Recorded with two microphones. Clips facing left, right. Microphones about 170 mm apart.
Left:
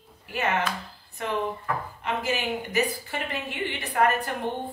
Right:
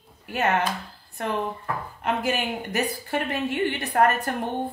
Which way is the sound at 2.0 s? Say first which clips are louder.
Right 3 dB; 55° right (ahead or behind).